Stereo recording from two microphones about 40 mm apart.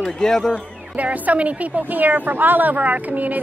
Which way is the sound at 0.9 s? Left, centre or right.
Right.